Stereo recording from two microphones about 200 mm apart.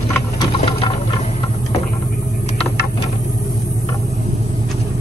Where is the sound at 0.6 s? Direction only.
25° left (ahead or behind).